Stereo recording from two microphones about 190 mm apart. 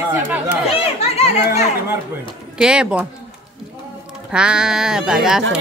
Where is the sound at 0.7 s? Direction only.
30° left (ahead or behind).